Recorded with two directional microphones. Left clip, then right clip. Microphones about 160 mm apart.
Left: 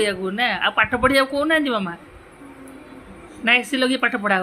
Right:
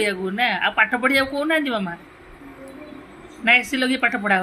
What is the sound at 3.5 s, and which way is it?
Speech, 5° right (ahead or behind).